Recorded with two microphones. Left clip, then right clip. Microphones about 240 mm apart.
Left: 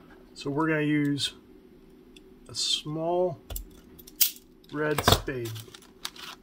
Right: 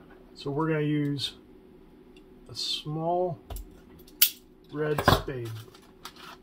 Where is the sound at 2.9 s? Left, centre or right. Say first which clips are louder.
Left 1 dB; left.